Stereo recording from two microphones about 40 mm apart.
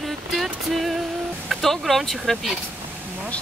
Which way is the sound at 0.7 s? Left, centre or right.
Centre.